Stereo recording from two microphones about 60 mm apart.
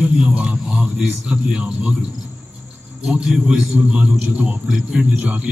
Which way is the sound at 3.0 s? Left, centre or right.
Centre.